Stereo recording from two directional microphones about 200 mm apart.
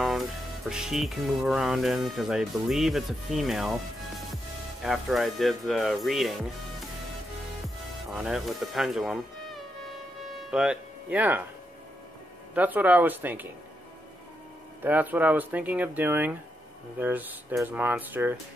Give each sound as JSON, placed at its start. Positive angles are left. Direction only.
{"t": 0.0, "sound": "music", "side_deg": 0}
{"t": 4.8, "sound": "music", "side_deg": 0}
{"t": 8.1, "sound": "music", "side_deg": 0}
{"t": 10.5, "sound": "speech", "side_deg": -5}
{"t": 12.5, "sound": "speech", "side_deg": -10}
{"t": 14.8, "sound": "speech", "side_deg": -10}